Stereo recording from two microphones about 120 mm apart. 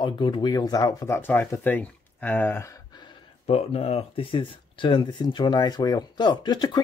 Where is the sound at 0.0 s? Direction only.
40° left (ahead or behind); by 2.8 s 20° left (ahead or behind).